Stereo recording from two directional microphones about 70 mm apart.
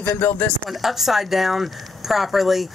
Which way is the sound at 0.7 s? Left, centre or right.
Centre.